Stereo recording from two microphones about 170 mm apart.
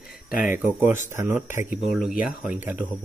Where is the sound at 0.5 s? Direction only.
15° right (ahead or behind).